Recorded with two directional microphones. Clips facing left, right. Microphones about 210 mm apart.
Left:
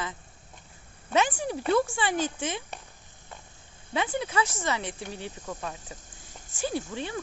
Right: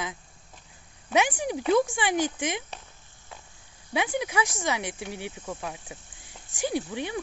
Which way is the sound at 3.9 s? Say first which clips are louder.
Right 1 dB; 15° right (ahead or behind).